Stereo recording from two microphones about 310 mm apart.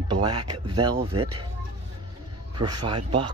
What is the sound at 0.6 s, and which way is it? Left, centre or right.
Speech, centre.